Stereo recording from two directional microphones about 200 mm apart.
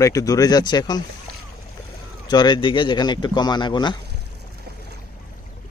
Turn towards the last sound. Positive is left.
turn(degrees=20)  # may be behind; listen again after turning